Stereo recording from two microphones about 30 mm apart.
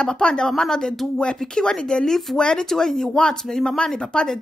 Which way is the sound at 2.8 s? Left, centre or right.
Centre.